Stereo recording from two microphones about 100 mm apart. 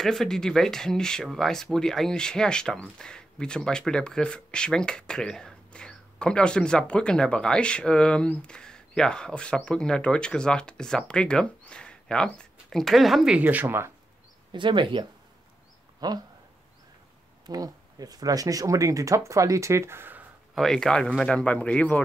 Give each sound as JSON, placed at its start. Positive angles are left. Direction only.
{"t": 0.0, "sound": "speech", "side_deg": 5}
{"t": 13.4, "sound": "speech", "side_deg": -15}
{"t": 14.5, "sound": "speech", "side_deg": -55}
{"t": 16.0, "sound": "speech", "side_deg": -40}
{"t": 17.5, "sound": "speech", "side_deg": -40}
{"t": 20.5, "sound": "speech", "side_deg": 5}